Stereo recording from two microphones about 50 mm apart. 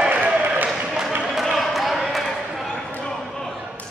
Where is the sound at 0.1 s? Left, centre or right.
Right.